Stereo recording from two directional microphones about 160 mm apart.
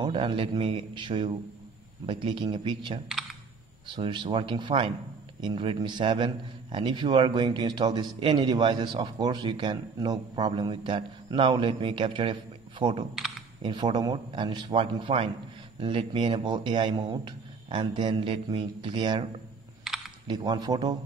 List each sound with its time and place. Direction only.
0.0 s a man's voice: 35° right (ahead or behind)
20.2 s a man's voice: 30° right (ahead or behind)